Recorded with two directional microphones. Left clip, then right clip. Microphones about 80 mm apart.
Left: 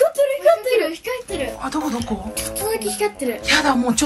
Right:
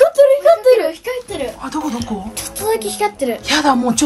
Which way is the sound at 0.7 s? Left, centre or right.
Right.